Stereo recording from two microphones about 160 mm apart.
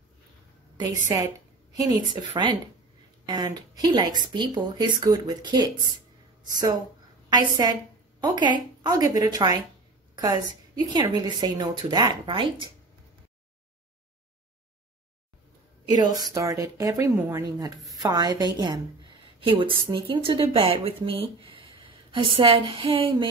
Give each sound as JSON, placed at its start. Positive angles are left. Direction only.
{"t": 1.0, "sound": "a woman's voice", "side_deg": -20}
{"t": 15.9, "sound": "a woman's voice", "side_deg": -25}